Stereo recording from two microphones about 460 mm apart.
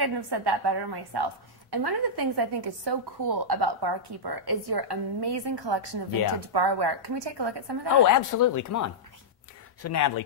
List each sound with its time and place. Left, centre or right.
0.0 s a woman's voice: right
8.0 s speech: left